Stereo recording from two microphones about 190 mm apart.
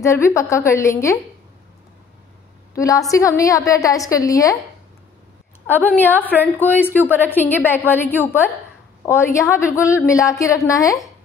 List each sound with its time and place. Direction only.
0.0 s a woman's voice: 15° left (ahead or behind)
2.7 s a woman's voice: 15° left (ahead or behind)
5.7 s a woman's voice: 10° left (ahead or behind)